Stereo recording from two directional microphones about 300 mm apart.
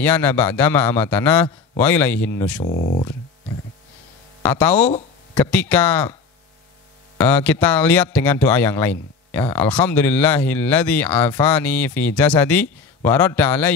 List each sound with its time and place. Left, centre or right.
0.0 s speech: centre
2.6 s speech: left
4.4 s speech: centre
7.2 s speech: centre